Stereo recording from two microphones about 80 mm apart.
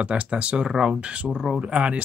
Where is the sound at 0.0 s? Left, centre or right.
Centre.